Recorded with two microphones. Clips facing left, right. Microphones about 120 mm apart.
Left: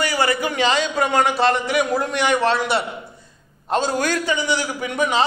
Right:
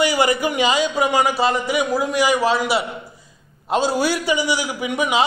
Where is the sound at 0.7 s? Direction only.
5° right (ahead or behind).